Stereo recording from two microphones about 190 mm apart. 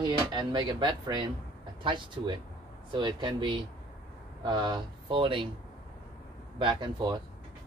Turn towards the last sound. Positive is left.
turn(degrees=-25)  # may be behind; listen again after turning